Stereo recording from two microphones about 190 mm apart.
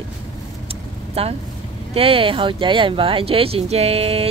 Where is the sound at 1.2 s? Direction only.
30° right (ahead or behind).